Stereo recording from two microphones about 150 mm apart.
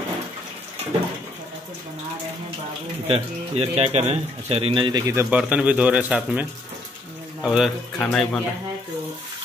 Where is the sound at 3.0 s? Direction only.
40° right (ahead or behind).